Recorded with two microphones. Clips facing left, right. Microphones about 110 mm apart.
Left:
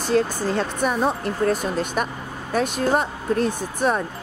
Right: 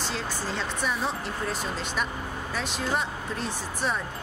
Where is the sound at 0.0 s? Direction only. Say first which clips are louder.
Left 11 dB; 50° left (ahead or behind).